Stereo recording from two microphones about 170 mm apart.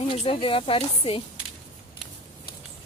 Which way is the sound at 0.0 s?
35° left (ahead or behind).